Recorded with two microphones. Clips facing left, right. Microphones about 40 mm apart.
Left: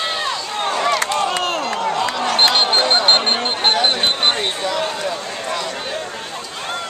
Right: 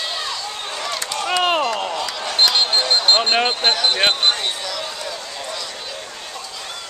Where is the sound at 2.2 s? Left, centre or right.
Left.